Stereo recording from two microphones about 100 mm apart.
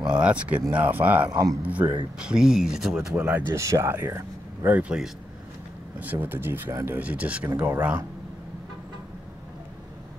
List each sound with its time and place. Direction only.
0.1 s speech: 10° right (ahead or behind)
1.3 s a man's voice: 35° right (ahead or behind)
1.6 s speech: 15° right (ahead or behind)
3.2 s speech: 25° right (ahead or behind)
6.1 s speech: 20° right (ahead or behind)